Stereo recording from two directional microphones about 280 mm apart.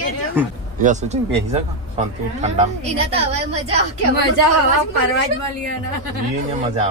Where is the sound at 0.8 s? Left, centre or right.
Right.